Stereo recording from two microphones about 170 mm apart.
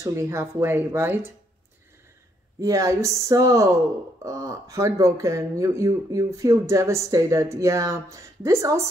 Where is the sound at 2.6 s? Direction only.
20° right (ahead or behind).